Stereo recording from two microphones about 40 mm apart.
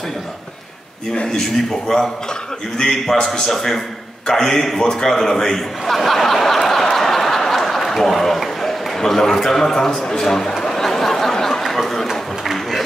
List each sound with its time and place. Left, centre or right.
1.1 s a man's voice: left
1.7 s a man's voice: centre
10.6 s chatter: centre
11.6 s a sound: centre